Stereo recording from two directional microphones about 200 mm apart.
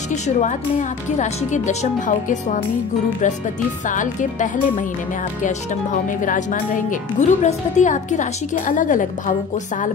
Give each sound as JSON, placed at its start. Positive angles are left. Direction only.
{"t": 0.1, "sound": "speech", "side_deg": 35}
{"t": 3.8, "sound": "speech", "side_deg": 40}
{"t": 6.0, "sound": "speech", "side_deg": 40}